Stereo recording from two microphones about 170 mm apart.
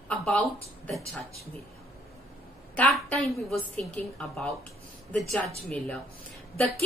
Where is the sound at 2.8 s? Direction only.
10° left (ahead or behind).